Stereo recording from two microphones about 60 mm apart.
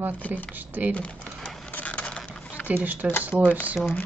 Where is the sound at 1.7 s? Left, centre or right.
Left.